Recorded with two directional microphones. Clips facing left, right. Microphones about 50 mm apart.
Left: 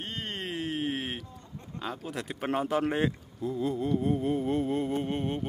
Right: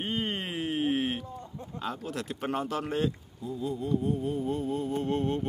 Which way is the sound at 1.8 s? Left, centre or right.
Centre.